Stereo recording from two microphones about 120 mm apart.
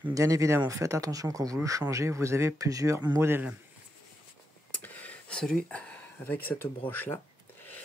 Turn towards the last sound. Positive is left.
turn(degrees=15)  # may be behind; listen again after turning